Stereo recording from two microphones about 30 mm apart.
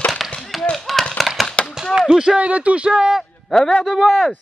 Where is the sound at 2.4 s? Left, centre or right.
Right.